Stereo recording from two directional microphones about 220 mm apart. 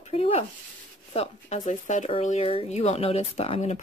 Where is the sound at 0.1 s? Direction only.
25° left (ahead or behind).